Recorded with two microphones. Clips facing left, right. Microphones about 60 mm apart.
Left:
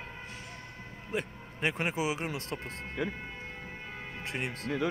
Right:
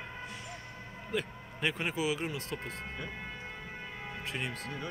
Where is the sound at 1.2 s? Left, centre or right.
Left.